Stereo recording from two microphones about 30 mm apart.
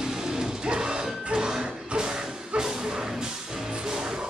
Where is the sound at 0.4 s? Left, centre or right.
Right.